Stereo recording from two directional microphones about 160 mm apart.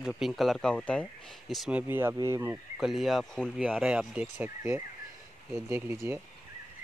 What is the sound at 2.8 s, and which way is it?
Speech, centre (ahead or behind).